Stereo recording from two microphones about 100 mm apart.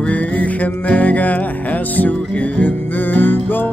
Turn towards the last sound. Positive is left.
turn(degrees=20)  # may be behind; listen again after turning